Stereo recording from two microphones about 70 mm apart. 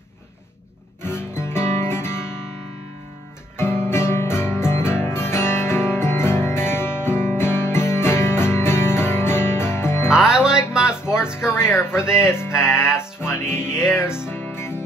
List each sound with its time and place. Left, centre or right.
1.0 s music: left
3.5 s music: left
10.1 s music: centre
12.0 s music: left
12.6 s music: centre
13.3 s music: left